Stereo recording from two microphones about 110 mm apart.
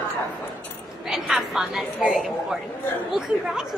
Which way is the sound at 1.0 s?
5° right (ahead or behind).